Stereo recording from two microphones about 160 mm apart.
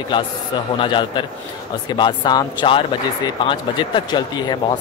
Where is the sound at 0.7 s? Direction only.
30° left (ahead or behind).